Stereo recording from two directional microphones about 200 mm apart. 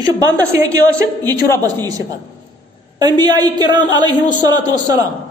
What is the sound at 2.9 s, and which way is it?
A man's voice, 20° right (ahead or behind).